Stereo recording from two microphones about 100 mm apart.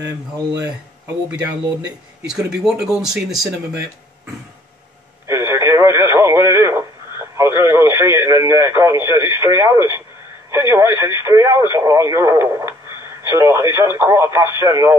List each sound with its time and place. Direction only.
2.2 s speech: 5° right (ahead or behind)
5.2 s speech: 25° right (ahead or behind)